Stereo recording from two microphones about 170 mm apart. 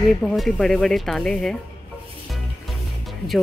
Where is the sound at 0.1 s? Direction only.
Centre (ahead or behind).